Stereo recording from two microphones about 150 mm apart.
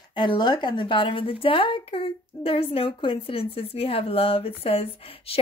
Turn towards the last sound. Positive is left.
turn(degrees=40)  # may be behind; listen again after turning